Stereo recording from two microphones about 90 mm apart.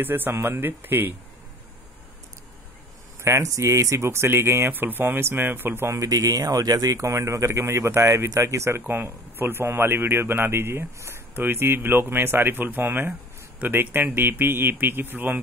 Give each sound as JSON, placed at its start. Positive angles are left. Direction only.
{"t": 0.0, "sound": "speech", "side_deg": -25}
{"t": 3.2, "sound": "a sound", "side_deg": -30}
{"t": 3.5, "sound": "speech", "side_deg": -35}
{"t": 5.9, "sound": "speech", "side_deg": -40}